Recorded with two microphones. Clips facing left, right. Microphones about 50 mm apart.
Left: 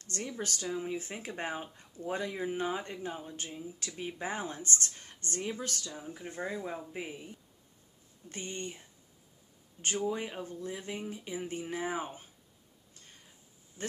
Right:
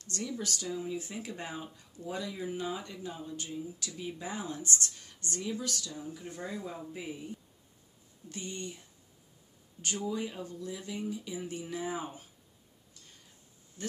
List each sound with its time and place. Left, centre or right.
0.0 s speech: left
8.3 s speech: left
13.8 s speech: left